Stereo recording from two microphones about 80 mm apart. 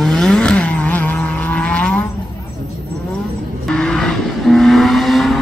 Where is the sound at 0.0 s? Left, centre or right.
Centre.